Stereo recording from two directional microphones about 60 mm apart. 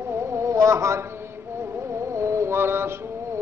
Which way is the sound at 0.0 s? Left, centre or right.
Right.